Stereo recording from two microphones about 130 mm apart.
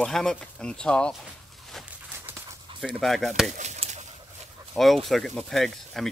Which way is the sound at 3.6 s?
65° right (ahead or behind).